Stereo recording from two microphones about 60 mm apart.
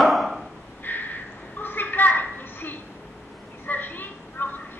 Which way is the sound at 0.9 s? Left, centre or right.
Left.